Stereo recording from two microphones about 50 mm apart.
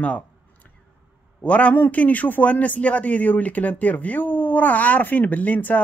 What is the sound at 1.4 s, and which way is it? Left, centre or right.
A man's voice, left.